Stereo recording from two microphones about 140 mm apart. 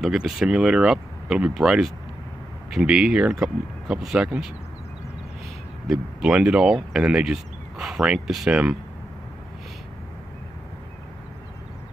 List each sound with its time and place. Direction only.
0.0 s speech: centre (ahead or behind)
5.9 s speech: 5° right (ahead or behind)